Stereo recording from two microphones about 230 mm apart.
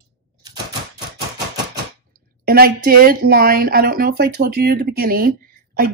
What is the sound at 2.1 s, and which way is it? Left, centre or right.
Speech, right.